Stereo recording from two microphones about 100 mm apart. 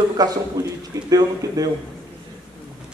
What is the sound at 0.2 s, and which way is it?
A man's voice, 40° right (ahead or behind).